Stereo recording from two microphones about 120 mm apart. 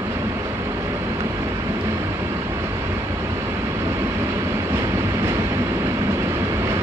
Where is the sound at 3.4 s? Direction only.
25° right (ahead or behind).